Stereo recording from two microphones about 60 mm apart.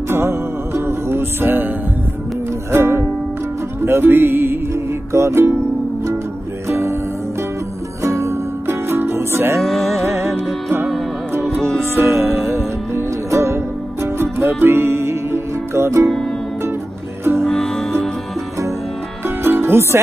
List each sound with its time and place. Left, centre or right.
0.1 s music: right
2.7 s music: right
5.1 s music: right
6.7 s music: right
8.0 s music: right
9.6 s music: centre
10.0 s music: right
11.9 s music: right
13.3 s music: right
14.0 s music: right
17.4 s music: centre
19.2 s music: right